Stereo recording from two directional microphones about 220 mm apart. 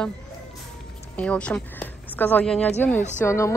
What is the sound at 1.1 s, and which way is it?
A woman's voice, 5° left (ahead or behind).